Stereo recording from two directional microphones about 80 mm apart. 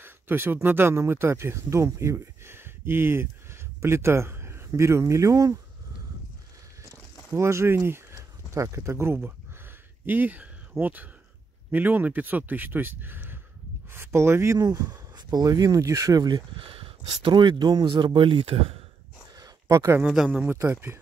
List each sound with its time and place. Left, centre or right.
0.0 s speech: right
7.3 s speech: right
14.6 s speech: right
17.2 s speech: right
19.3 s a sound: right
20.4 s speech: right